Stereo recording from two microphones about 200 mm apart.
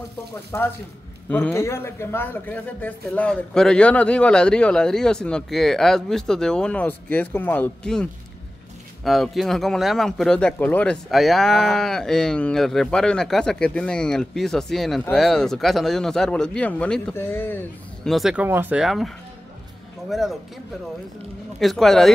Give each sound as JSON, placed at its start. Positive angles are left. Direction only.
{"t": 0.5, "sound": "speech", "side_deg": 15}
{"t": 21.5, "sound": "speech", "side_deg": 0}